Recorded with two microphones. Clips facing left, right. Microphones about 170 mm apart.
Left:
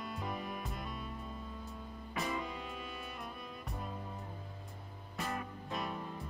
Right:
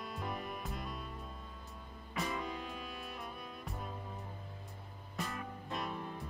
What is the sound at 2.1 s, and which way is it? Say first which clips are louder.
Music: even; centre (ahead or behind).